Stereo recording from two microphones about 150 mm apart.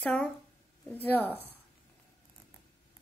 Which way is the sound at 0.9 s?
10° left (ahead or behind).